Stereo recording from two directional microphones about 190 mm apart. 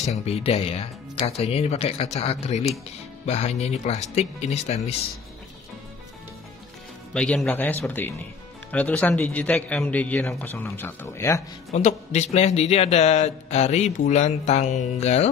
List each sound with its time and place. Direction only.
0.1 s a man's voice: 35° left (ahead or behind)
7.2 s speech: 5° left (ahead or behind)
11.7 s a man's voice: 35° left (ahead or behind)